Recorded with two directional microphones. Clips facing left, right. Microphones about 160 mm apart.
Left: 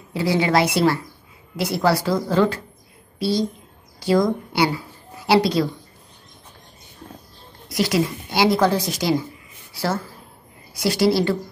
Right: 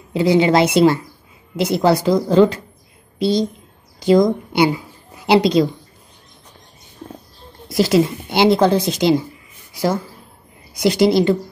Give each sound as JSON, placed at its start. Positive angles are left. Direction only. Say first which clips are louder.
{"t": 0.1, "sound": "a woman's voice", "louder": "right 5 dB", "side_deg": -20}
{"t": 7.6, "sound": "speech", "louder": "right 6 dB", "side_deg": -25}